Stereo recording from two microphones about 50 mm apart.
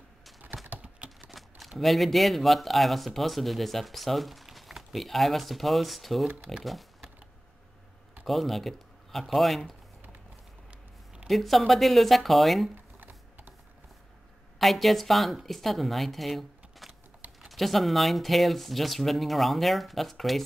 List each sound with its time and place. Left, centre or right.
1.8 s speech: centre
6.6 s typing: centre
8.3 s speech: centre
11.2 s speech: centre
13.0 s mechanisms: right
14.6 s speech: centre